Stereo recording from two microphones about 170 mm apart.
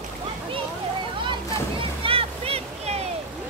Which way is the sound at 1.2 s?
30° right (ahead or behind).